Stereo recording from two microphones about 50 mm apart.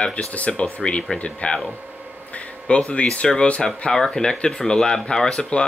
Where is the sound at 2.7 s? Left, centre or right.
Left.